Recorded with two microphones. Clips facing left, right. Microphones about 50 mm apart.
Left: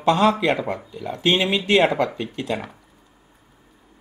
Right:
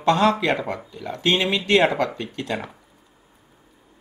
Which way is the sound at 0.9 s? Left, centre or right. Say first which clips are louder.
Left 1 dB; centre.